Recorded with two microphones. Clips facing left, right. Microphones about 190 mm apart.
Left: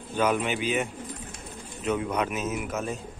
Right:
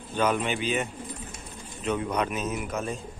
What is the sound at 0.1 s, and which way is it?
Speech, 10° left (ahead or behind).